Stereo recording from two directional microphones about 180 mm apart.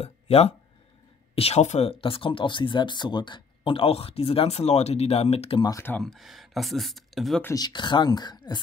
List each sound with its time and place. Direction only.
0.0 s speech: 35° left (ahead or behind)
5.6 s speech: 15° left (ahead or behind)
6.0 s speech: centre (ahead or behind)
7.4 s speech: 20° left (ahead or behind)